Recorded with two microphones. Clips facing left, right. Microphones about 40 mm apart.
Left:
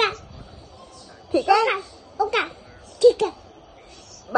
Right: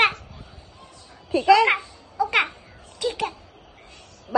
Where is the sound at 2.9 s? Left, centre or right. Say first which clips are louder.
Left 12 dB; centre.